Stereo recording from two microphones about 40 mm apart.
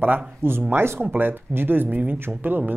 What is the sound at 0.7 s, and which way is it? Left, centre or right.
Speech, right.